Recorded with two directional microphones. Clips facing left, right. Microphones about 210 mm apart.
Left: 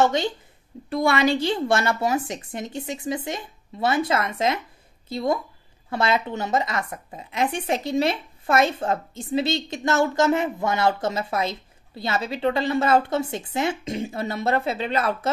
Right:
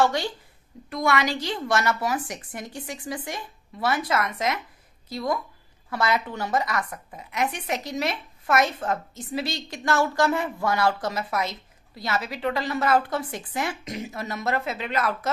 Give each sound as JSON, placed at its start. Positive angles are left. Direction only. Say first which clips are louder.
{"t": 0.0, "sound": "a woman's voice", "louder": "left 2 dB", "side_deg": 20}